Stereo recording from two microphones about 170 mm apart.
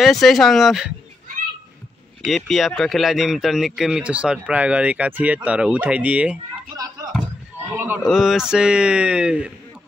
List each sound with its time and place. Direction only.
0.0 s speech: centre (ahead or behind)
2.2 s speech: centre (ahead or behind)
7.0 s a sound: 20° right (ahead or behind)
7.7 s speech: 10° right (ahead or behind)